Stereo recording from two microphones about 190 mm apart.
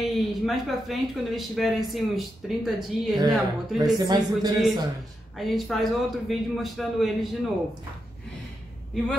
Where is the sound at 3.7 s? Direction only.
20° right (ahead or behind).